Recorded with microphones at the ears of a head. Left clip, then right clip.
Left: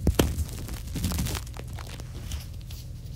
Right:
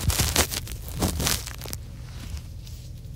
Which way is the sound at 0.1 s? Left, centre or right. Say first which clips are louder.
Right 4 dB; right.